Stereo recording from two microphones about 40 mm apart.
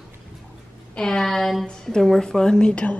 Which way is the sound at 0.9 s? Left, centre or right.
Centre.